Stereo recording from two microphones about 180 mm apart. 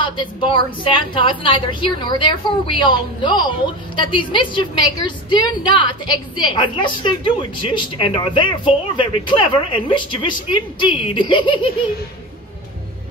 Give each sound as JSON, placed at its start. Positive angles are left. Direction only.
{"t": 0.0, "sound": "a woman's voice", "side_deg": 25}